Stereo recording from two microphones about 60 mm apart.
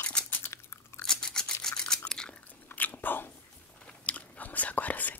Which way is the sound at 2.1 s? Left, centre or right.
Centre.